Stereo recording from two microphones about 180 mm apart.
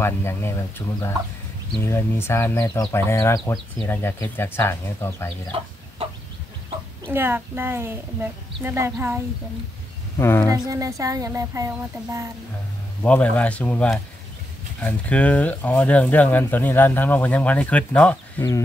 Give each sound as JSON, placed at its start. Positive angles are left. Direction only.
{"t": 0.0, "sound": "speech", "side_deg": 15}
{"t": 5.5, "sound": "chicken", "side_deg": -30}
{"t": 7.1, "sound": "speech", "side_deg": -10}
{"t": 10.1, "sound": "speech", "side_deg": 15}
{"t": 10.5, "sound": "speech", "side_deg": -20}
{"t": 13.0, "sound": "speech", "side_deg": 5}